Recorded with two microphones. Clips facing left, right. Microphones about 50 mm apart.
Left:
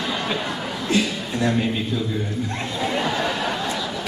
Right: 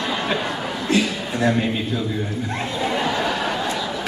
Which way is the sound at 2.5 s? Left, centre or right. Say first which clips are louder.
Right 2 dB; centre.